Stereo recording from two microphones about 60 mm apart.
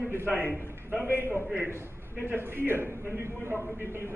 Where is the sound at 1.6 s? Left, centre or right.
Right.